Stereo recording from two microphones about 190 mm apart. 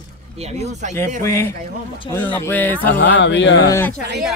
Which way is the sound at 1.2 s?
15° left (ahead or behind).